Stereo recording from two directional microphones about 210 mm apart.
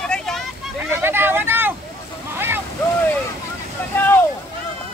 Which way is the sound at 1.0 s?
10° right (ahead or behind).